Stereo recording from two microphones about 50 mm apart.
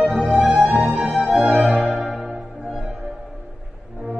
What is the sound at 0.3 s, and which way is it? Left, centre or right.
Music, right.